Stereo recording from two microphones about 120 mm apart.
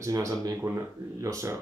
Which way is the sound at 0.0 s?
25° right (ahead or behind).